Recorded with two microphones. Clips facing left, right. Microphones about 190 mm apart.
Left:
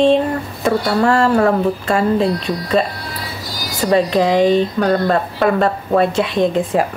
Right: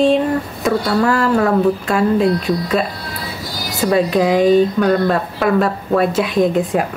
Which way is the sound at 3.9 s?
5° right (ahead or behind).